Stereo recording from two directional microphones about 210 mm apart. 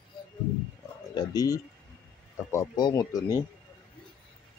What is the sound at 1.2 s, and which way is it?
Speech, 15° left (ahead or behind).